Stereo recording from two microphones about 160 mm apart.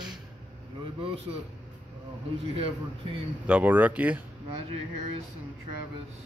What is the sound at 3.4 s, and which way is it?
Speech, 10° right (ahead or behind).